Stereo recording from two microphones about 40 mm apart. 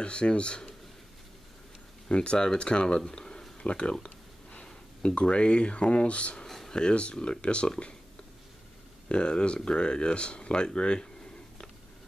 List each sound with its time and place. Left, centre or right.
0.0 s speech: left
2.0 s speech: left
6.3 s a sound: centre
6.7 s speech: left
9.1 s speech: left